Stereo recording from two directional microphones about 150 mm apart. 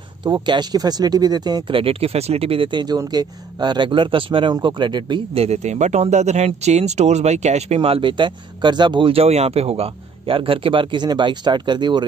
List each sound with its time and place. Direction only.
0.2 s speech: 30° right (ahead or behind)